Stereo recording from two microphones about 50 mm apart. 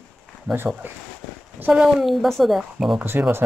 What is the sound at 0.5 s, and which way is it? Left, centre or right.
Speech, right.